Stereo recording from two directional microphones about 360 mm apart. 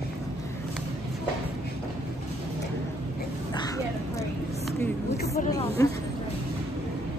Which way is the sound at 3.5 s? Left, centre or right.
Centre.